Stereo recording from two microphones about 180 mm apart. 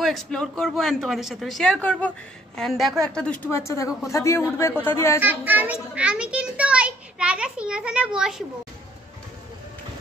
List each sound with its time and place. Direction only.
0.0 s speech: centre (ahead or behind)
5.2 s speech: 10° right (ahead or behind)